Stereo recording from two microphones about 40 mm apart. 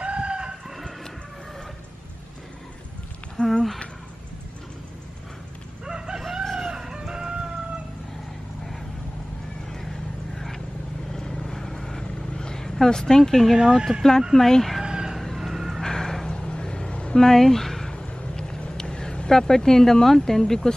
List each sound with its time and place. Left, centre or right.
0.0 s chicken: right
3.4 s a sound: left
5.9 s chicken: centre
6.7 s chicken: centre
9.7 s vehicle: centre
13.6 s speech: centre
14.3 s speech: centre
14.9 s chicken: centre
15.1 s vehicle: centre
15.8 s a sound: centre
17.9 s a sound: left